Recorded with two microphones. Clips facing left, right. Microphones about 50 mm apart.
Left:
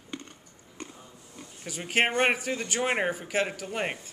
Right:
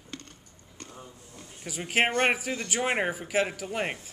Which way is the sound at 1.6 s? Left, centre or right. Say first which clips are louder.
Even; centre.